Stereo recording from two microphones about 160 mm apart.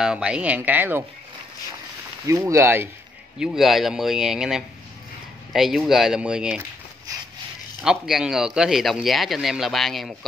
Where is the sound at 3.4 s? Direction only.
Centre (ahead or behind).